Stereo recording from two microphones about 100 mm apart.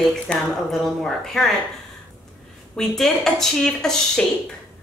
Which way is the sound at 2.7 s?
5° left (ahead or behind).